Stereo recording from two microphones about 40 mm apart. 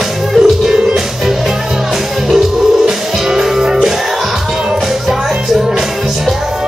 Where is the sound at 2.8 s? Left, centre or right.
Centre.